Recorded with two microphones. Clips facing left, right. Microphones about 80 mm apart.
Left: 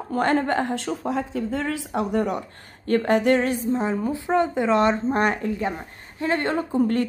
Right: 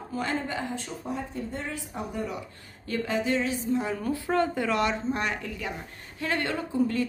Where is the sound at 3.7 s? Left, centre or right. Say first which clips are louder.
Left 4 dB; left.